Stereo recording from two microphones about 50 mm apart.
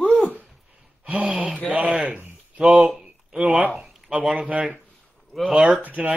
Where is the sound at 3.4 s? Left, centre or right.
Right.